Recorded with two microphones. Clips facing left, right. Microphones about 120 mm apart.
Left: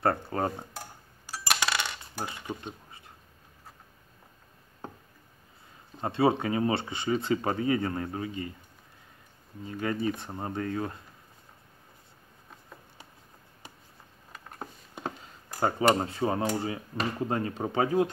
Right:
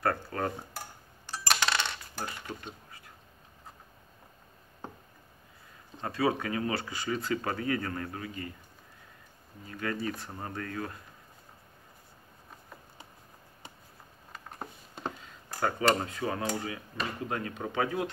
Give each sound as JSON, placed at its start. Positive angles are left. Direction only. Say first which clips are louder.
{"t": 0.0, "sound": "speech", "louder": "left 3 dB", "side_deg": 25}
{"t": 1.2, "sound": "coin", "louder": "even", "side_deg": 5}
{"t": 5.9, "sound": "speech", "louder": "left 4 dB", "side_deg": 25}
{"t": 9.7, "sound": "speech", "louder": "left 4 dB", "side_deg": 25}
{"t": 15.6, "sound": "speech", "louder": "left 3 dB", "side_deg": 25}